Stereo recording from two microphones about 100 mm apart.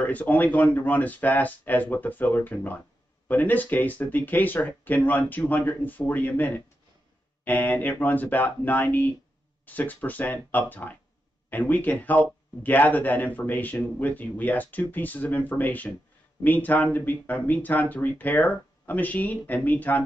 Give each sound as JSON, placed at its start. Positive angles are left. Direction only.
{"t": 0.0, "sound": "speech", "side_deg": 15}